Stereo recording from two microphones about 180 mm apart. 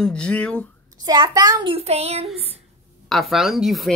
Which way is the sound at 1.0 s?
20° right (ahead or behind).